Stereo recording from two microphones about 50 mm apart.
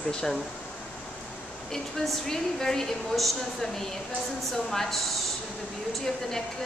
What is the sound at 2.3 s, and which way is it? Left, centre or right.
A woman's voice, centre.